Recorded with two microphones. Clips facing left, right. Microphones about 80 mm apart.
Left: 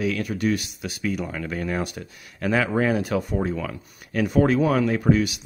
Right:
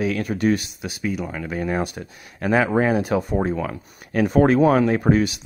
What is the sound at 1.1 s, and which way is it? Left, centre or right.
Speech, centre.